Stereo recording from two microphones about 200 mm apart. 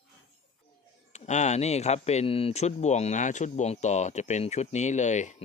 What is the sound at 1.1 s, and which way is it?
Speech, 35° left (ahead or behind).